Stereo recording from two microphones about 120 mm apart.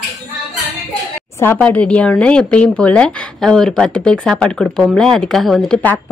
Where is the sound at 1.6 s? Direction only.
10° left (ahead or behind).